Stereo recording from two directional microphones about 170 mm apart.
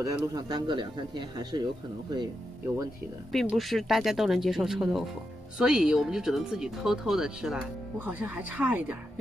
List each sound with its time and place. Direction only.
0.0 s speech: 20° right (ahead or behind)
3.3 s speech: centre (ahead or behind)